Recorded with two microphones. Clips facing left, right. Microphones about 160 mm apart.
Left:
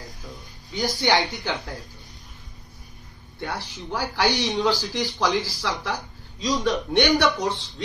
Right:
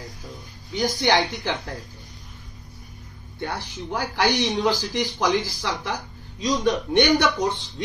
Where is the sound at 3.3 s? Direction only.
20° right (ahead or behind).